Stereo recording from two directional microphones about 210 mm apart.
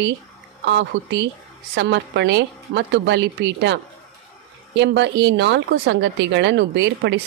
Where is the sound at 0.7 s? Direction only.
55° right (ahead or behind).